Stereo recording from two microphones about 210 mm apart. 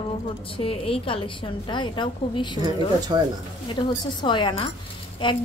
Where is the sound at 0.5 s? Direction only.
25° left (ahead or behind).